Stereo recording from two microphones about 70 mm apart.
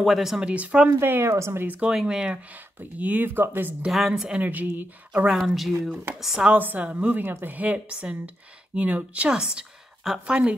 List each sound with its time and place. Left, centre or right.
0.0 s speech: centre
0.4 s a woman's voice: centre
0.9 s speech: right
1.7 s a woman's voice: centre
3.8 s a woman's voice: centre
4.4 s a woman's voice: right
5.3 s speech: centre
6.4 s a woman's voice: right